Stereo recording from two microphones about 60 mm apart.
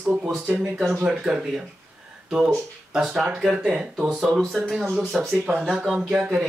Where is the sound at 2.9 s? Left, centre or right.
Centre.